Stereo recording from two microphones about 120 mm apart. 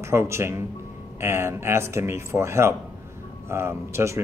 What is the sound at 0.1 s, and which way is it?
Speech, 20° right (ahead or behind).